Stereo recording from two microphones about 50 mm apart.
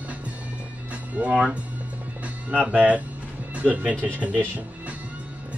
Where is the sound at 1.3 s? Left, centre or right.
Centre.